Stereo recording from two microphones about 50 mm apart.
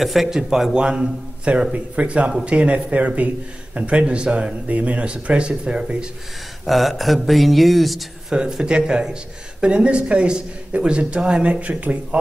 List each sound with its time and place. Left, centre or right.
0.0 s speech: centre
0.8 s speech: right
6.6 s speech: centre
8.3 s speech: centre